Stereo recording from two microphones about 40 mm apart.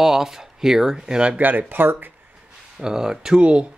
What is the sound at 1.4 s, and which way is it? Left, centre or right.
Speech, right.